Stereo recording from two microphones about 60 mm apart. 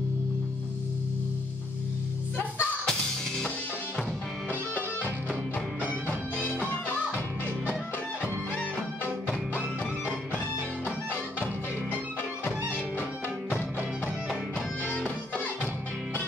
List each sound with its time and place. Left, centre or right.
2.3 s music: left
15.0 s music: left